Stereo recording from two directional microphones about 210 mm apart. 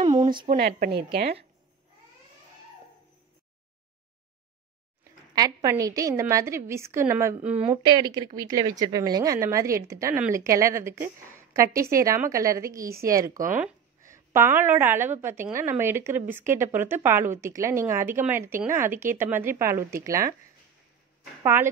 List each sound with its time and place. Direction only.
0.0 s a sound: 30° right (ahead or behind)
0.4 s a woman's voice: 45° right (ahead or behind)
5.3 s a woman's voice: 15° right (ahead or behind)
7.8 s a woman's voice: 20° right (ahead or behind)